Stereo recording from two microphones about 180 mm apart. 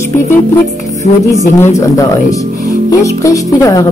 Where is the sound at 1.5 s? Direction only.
15° left (ahead or behind).